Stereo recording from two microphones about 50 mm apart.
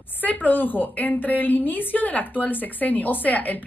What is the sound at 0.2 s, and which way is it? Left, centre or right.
A woman's voice, left.